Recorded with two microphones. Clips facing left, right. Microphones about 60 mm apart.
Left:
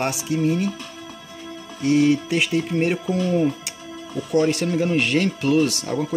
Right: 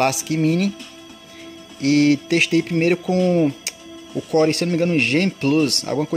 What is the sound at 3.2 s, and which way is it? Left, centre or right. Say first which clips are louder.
Speech: right 3 dB; right.